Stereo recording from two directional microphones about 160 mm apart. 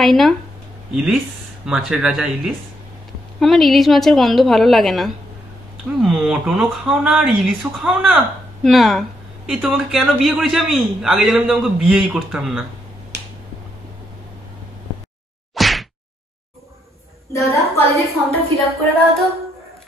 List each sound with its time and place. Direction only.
0.0 s a man's voice: centre (ahead or behind)
15.5 s whack: centre (ahead or behind)
17.3 s a woman's voice: 20° left (ahead or behind)
18.0 s a man's voice: centre (ahead or behind)